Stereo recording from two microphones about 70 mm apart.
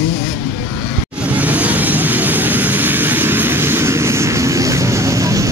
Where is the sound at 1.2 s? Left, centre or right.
Right.